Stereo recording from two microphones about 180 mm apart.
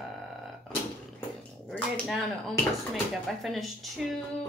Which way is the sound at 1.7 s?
Centre (ahead or behind).